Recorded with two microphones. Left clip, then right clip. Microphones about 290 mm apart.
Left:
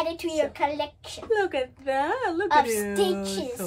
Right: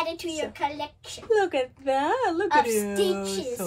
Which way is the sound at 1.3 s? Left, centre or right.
Centre.